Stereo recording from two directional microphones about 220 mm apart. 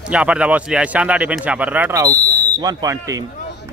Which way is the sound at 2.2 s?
35° left (ahead or behind).